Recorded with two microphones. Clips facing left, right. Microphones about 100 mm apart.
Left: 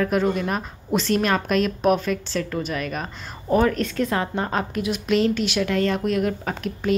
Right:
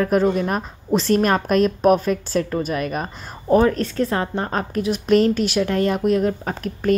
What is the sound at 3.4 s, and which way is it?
A woman's voice, 25° right (ahead or behind).